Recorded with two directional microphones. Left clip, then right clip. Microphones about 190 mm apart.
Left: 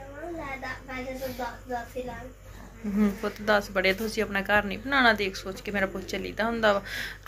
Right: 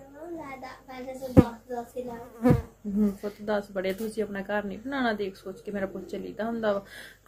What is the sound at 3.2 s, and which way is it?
A woman's voice, 20° right (ahead or behind).